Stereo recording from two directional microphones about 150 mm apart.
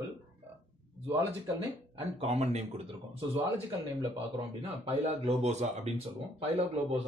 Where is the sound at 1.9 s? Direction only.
40° right (ahead or behind).